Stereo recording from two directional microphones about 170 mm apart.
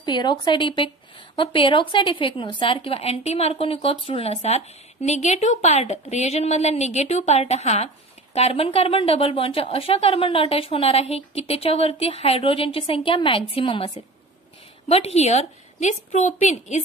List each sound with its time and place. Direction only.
0.0 s a woman's voice: 25° left (ahead or behind); by 16.8 s 45° left (ahead or behind)